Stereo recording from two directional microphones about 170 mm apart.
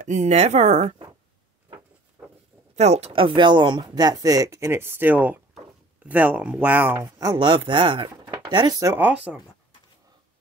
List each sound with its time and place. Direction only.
0.0 s speech: 45° right (ahead or behind)
2.2 s a sound: 15° right (ahead or behind)
2.7 s speech: 40° right (ahead or behind); by 9.4 s 5° right (ahead or behind)